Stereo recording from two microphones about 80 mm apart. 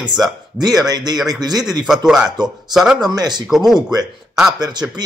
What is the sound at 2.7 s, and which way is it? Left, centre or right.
Speech, centre.